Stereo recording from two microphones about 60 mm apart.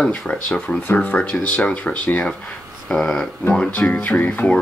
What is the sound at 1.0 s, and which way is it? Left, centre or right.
Speech, left.